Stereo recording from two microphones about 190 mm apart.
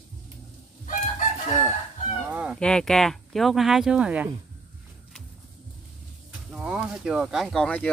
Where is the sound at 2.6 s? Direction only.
5° left (ahead or behind).